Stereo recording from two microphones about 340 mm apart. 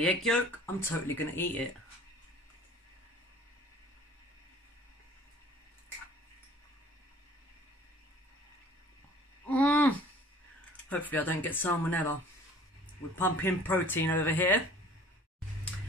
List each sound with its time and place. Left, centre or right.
0.0 s speech: centre
9.5 s a sound: centre
10.9 s speech: centre
13.2 s speech: centre